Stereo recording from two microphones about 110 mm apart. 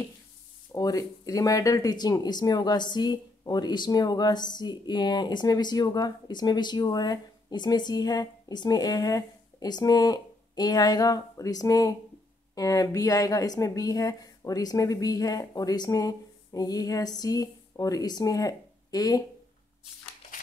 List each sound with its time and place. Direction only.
0.7 s speech: 35° left (ahead or behind)